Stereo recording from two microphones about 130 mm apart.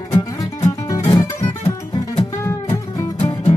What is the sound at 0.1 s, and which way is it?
Music, 25° left (ahead or behind).